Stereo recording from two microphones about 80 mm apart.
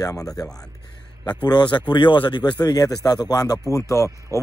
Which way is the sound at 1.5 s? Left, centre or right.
Left.